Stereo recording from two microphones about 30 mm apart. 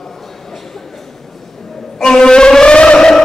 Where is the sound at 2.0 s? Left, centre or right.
Centre.